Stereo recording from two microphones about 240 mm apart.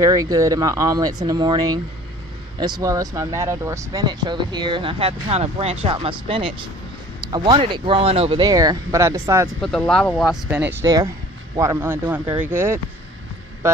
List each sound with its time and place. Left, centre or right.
0.0 s speech: centre
9.6 s speech: centre